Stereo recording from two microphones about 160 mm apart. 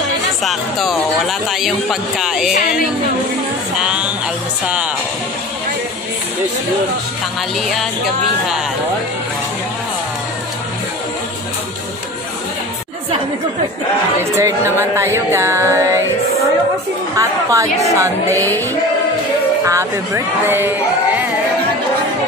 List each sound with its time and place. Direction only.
0.4 s speech: centre (ahead or behind)
3.8 s speech: 5° right (ahead or behind)
14.3 s speech: 15° right (ahead or behind)
17.2 s music: 20° right (ahead or behind)
19.6 s speech: 20° right (ahead or behind)